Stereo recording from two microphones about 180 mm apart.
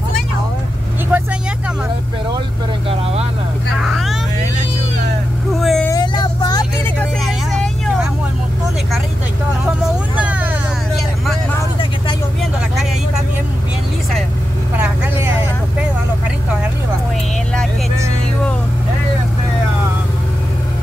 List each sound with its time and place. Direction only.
1.1 s vehicle: 10° right (ahead or behind)
3.8 s vehicle: centre (ahead or behind)
5.5 s vehicle: centre (ahead or behind)
5.9 s vehicle: 20° left (ahead or behind)
7.0 s vehicle: centre (ahead or behind)